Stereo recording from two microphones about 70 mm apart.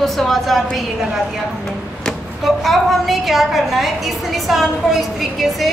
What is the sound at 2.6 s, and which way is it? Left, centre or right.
A woman's voice, centre.